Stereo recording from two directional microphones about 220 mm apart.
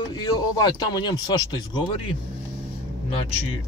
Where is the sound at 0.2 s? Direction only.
20° left (ahead or behind).